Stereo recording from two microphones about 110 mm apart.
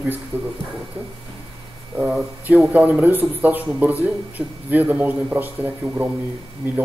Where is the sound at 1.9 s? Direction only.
10° right (ahead or behind).